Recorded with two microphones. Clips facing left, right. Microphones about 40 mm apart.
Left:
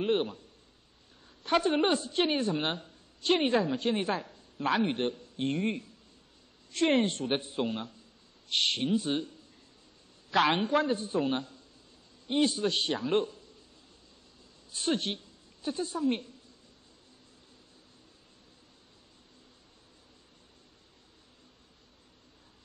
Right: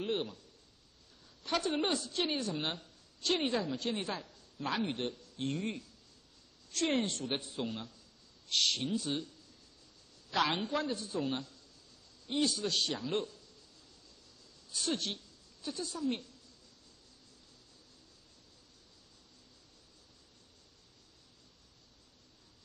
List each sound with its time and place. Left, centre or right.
0.0 s speech: left
10.3 s speech: left
14.7 s a woman's voice: left